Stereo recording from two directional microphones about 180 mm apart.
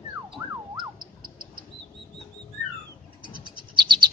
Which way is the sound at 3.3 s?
25° right (ahead or behind).